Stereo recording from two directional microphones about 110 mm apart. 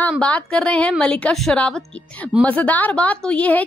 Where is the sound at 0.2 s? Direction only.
10° left (ahead or behind).